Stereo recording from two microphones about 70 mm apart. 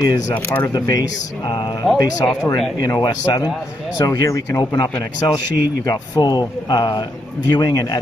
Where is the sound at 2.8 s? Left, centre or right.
Left.